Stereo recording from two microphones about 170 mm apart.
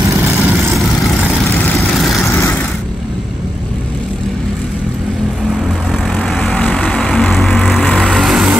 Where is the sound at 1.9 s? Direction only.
Centre (ahead or behind).